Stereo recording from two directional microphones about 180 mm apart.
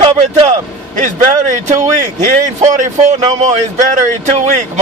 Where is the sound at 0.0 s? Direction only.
40° right (ahead or behind).